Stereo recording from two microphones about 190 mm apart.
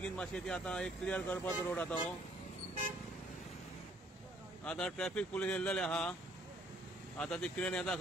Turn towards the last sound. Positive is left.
turn(degrees=5)  # may be behind; listen again after turning